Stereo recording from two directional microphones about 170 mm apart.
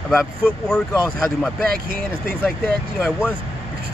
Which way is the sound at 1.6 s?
60° right (ahead or behind).